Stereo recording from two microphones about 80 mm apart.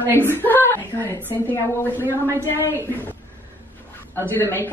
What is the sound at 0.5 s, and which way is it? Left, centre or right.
A woman's voice, left.